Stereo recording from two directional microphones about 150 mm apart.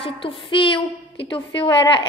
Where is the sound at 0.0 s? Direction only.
35° left (ahead or behind).